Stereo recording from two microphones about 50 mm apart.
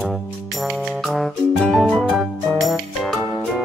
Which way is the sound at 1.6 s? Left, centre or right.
Centre.